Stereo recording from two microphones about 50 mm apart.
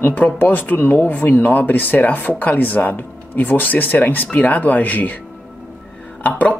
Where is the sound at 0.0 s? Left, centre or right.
Left.